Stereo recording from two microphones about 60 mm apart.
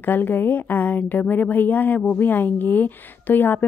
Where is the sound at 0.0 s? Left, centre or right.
Left.